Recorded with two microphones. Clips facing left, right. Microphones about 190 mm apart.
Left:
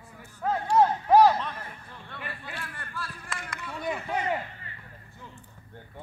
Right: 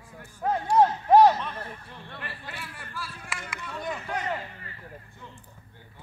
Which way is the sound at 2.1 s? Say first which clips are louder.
Left 2 dB; centre (ahead or behind).